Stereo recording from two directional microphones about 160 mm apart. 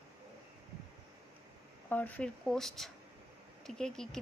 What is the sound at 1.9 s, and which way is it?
Speech, 10° left (ahead or behind).